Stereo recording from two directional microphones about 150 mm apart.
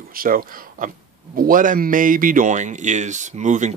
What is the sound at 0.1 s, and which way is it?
A man's voice, 75° right (ahead or behind).